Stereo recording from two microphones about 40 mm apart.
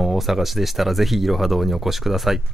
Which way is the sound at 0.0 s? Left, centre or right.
Centre.